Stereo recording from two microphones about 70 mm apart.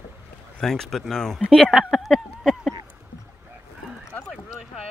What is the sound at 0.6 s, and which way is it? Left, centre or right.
Speech, centre.